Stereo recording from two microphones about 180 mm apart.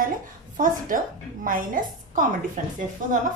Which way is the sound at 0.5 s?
50° right (ahead or behind).